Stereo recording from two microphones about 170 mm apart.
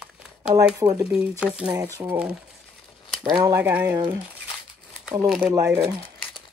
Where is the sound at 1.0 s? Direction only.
5° right (ahead or behind).